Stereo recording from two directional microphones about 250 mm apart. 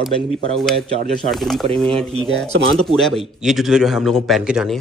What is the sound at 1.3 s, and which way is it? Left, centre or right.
Speech, centre.